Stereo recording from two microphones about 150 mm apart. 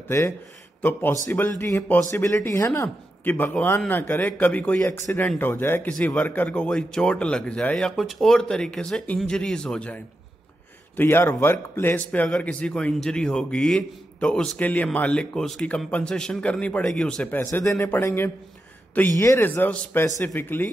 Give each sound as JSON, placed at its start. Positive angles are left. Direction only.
{"t": 0.8, "sound": "speech", "side_deg": 15}
{"t": 11.0, "sound": "speech", "side_deg": 15}